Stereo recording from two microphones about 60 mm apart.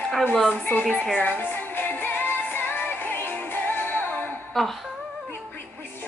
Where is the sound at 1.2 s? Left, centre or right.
Left.